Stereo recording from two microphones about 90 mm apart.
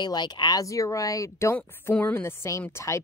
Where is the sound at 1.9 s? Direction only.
20° left (ahead or behind).